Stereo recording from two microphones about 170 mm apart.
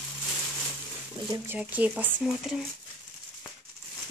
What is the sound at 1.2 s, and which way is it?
A woman's voice, 15° right (ahead or behind).